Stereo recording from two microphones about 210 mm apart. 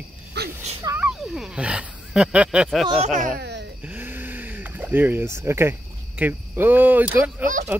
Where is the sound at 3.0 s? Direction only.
35° right (ahead or behind).